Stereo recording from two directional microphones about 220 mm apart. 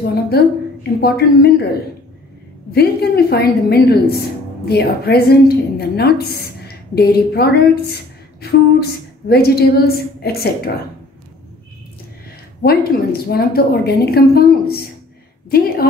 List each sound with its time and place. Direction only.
0.0 s a woman's voice: 45° left (ahead or behind)
2.7 s a woman's voice: 45° left (ahead or behind)
12.6 s a woman's voice: 45° left (ahead or behind)